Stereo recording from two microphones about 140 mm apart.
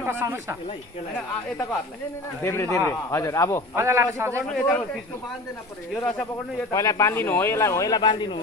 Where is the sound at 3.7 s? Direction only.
20° right (ahead or behind).